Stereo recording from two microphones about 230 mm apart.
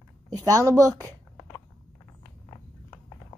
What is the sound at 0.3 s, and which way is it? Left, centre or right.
A woman's voice, centre.